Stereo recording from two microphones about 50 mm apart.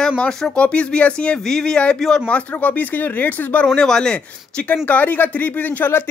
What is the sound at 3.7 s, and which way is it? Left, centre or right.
Speech, centre.